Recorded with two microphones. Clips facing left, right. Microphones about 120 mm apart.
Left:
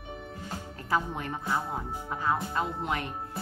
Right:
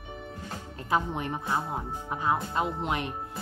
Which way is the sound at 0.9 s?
20° right (ahead or behind).